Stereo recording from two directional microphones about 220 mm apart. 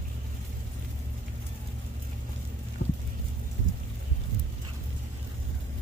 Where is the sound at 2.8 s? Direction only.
50° left (ahead or behind).